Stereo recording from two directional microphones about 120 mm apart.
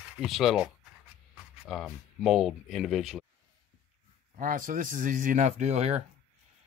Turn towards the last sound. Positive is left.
turn(degrees=-65)  # may be behind; listen again after turning